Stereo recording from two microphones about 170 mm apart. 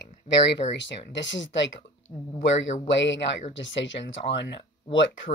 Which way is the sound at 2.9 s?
90° left.